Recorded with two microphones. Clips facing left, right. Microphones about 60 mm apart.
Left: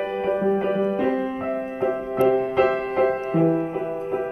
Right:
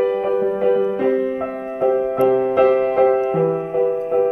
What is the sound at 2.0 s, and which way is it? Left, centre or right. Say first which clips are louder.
Music: right 1 dB; right.